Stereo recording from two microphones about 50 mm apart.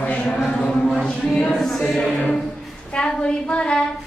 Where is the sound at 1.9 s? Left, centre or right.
Centre.